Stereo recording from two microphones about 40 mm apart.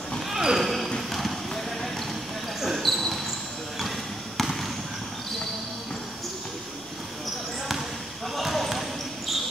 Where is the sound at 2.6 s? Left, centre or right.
Centre.